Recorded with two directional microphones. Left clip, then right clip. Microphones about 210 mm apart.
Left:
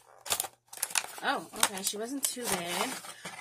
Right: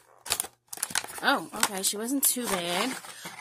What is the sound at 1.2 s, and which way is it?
Speech, 55° right (ahead or behind).